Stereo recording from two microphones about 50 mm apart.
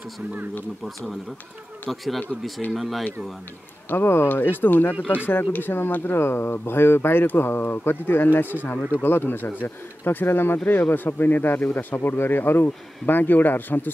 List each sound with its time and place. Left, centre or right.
1.9 s speech: centre
3.9 s speech: left